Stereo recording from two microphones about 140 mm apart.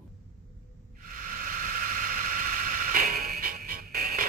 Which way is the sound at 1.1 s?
80° right.